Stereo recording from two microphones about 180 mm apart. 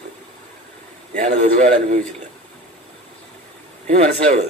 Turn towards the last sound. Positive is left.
turn(degrees=-35)  # may be behind; listen again after turning